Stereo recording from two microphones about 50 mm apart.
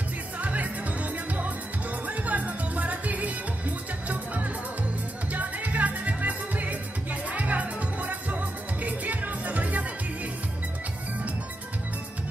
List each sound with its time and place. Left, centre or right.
0.4 s music: right